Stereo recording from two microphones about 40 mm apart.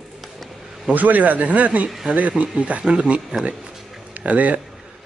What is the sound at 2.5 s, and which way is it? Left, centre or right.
Speech, right.